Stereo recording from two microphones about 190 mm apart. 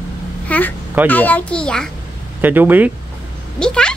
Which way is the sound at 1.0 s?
10° left (ahead or behind).